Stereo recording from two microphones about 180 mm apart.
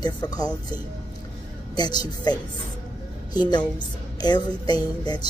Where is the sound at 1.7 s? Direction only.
25° left (ahead or behind).